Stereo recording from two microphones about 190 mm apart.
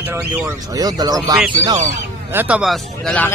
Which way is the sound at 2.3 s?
5° right (ahead or behind).